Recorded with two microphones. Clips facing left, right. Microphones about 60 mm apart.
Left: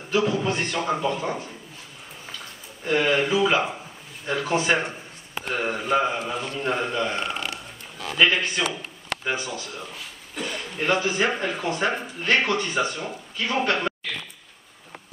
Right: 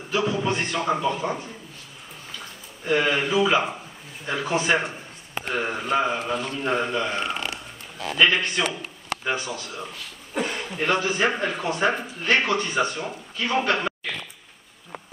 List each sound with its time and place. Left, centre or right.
0.1 s speech: centre
2.8 s speech: centre
10.3 s a sound: right
10.6 s speech: centre